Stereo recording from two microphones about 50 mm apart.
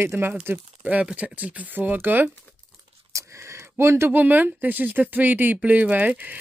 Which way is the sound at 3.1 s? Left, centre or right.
Right.